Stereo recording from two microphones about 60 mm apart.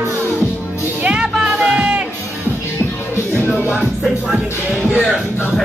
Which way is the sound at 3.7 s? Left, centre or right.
Centre.